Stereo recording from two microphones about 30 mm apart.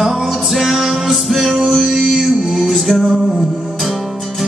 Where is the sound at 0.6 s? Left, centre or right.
Centre; by 3.2 s right.